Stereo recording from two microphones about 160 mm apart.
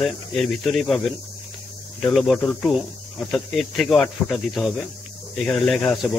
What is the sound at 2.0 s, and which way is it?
Speech, centre (ahead or behind).